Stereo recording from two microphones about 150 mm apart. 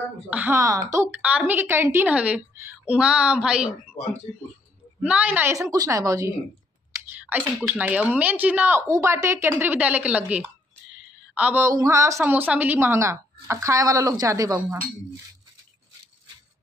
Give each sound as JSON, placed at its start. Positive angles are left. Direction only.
{"t": 0.3, "sound": "speech", "side_deg": -10}
{"t": 1.2, "sound": "speech", "side_deg": -10}
{"t": 5.0, "sound": "speech", "side_deg": -10}
{"t": 7.1, "sound": "a sound", "side_deg": -10}
{"t": 7.6, "sound": "speech", "side_deg": -10}
{"t": 10.9, "sound": "a sound", "side_deg": -5}
{"t": 11.7, "sound": "speech", "side_deg": -20}